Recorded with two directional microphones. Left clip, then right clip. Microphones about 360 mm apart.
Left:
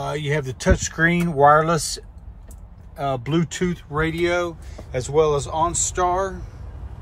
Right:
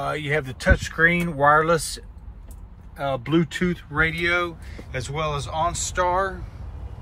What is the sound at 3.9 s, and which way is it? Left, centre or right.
Speech, centre.